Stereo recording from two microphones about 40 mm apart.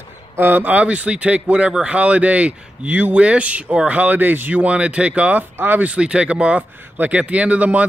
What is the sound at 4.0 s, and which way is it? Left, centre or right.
Speech, right.